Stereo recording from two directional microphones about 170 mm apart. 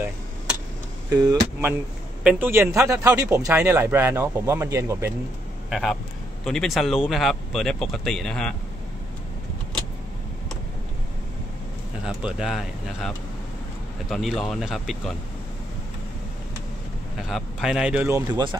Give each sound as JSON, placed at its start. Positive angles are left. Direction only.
{"t": 1.2, "sound": "speech", "side_deg": -20}
{"t": 2.2, "sound": "a man's voice", "side_deg": -10}
{"t": 5.7, "sound": "speech", "side_deg": 0}
{"t": 12.0, "sound": "speech", "side_deg": -5}
{"t": 17.3, "sound": "a man's voice", "side_deg": -5}